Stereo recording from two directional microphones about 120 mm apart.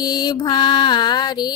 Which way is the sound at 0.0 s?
35° left (ahead or behind).